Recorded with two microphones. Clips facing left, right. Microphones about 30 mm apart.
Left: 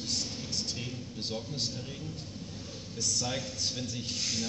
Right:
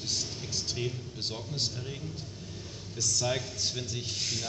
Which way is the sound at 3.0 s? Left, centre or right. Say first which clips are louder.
Right 1 dB; right.